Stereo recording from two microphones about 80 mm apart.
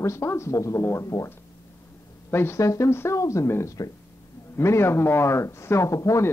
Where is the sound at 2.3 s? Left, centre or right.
Left.